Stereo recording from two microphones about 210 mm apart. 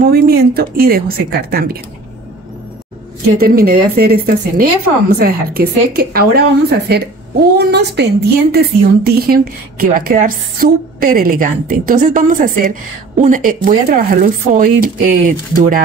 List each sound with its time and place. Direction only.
0.0 s a woman's voice: 45° right (ahead or behind)
3.3 s a woman's voice: 45° right (ahead or behind)